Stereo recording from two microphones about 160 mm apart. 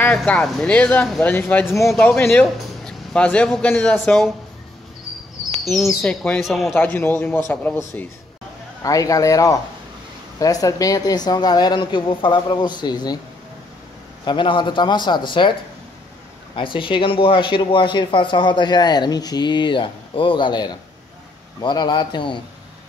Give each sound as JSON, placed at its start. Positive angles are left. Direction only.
{"t": 0.0, "sound": "speech", "side_deg": 10}
{"t": 1.7, "sound": "speech", "side_deg": 0}
{"t": 2.0, "sound": "speech", "side_deg": 10}
{"t": 5.7, "sound": "speech", "side_deg": 0}
{"t": 6.8, "sound": "speech", "side_deg": 15}
{"t": 8.8, "sound": "speech", "side_deg": 20}
{"t": 14.2, "sound": "speech", "side_deg": 30}
{"t": 16.5, "sound": "speech", "side_deg": 30}